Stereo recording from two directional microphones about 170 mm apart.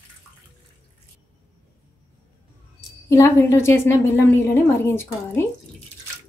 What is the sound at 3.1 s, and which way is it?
A woman's voice, 15° left (ahead or behind).